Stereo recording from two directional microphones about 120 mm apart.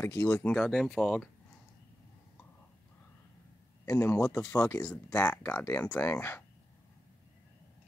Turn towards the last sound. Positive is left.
turn(degrees=20)  # may be behind; listen again after turning